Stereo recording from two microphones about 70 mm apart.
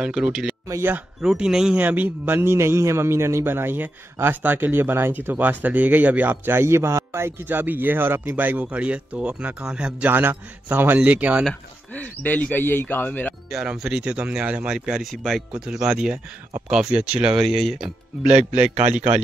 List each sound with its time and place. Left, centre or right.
0.0 s speech: centre
1.8 s a man's voice: right
10.0 s a man's voice: right
11.9 s speech: left
13.7 s speech: centre
14.9 s speech: centre
18.2 s speech: centre